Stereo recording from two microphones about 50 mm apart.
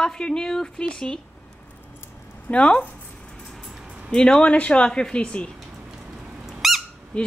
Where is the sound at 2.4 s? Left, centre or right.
Left.